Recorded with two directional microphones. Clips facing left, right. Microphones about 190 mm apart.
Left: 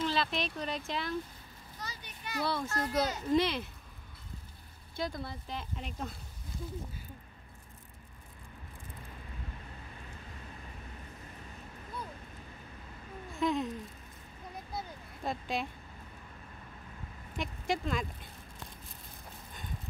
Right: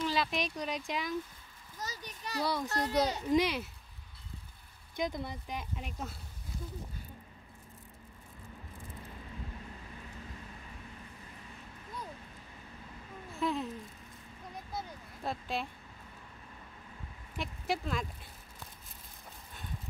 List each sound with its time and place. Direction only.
0.0 s speech: 10° right (ahead or behind)
1.8 s a child's voice: 40° right (ahead or behind)
2.4 s speech: 15° right (ahead or behind)
2.7 s a child's voice: 35° right (ahead or behind)
3.3 s speech: 10° right (ahead or behind)
4.9 s speech: 20° right (ahead or behind)
13.3 s speech: centre (ahead or behind)
14.8 s a sound: centre (ahead or behind)
17.4 s speech: centre (ahead or behind)